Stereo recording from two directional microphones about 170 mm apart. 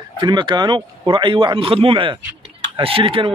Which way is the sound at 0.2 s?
25° right (ahead or behind).